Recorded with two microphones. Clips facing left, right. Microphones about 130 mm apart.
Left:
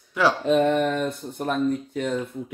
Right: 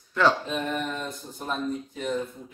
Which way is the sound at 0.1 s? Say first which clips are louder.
Left 1 dB; 10° left (ahead or behind).